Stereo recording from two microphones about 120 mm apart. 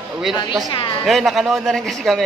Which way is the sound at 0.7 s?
40° left (ahead or behind).